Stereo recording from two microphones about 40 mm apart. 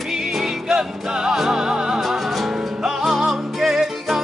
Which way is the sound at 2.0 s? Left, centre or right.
Centre.